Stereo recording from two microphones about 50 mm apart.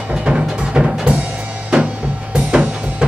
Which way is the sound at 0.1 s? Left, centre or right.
Centre.